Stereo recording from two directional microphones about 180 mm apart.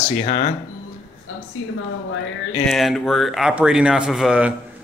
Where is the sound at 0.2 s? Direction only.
45° left (ahead or behind).